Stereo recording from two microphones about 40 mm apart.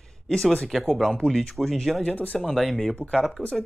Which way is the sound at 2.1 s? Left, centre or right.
Left.